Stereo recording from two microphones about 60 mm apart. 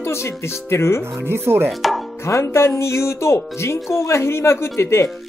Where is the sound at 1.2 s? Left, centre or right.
Right.